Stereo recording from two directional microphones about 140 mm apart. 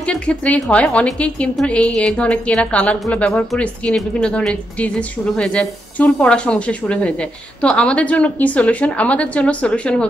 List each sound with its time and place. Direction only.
0.0 s a woman's voice: 10° left (ahead or behind)